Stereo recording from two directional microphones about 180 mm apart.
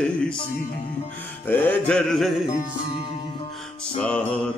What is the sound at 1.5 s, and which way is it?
Music, 5° left (ahead or behind).